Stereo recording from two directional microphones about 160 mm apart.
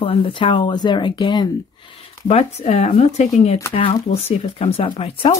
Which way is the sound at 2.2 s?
40° left (ahead or behind).